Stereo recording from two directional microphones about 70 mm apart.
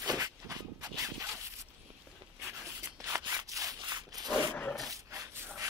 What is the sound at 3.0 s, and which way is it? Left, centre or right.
Scissors, right.